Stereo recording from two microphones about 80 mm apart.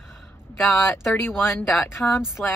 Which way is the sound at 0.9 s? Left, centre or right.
Left.